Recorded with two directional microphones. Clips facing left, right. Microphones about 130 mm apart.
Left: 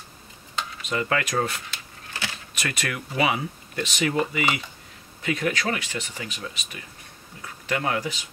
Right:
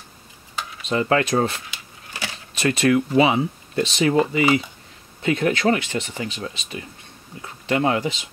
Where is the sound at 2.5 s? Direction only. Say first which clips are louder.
Right 14 dB; 30° right (ahead or behind).